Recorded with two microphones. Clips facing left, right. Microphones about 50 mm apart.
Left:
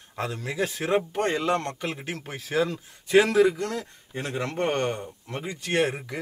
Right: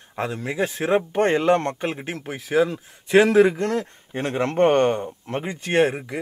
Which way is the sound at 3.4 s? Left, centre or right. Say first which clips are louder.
Right 4 dB; right.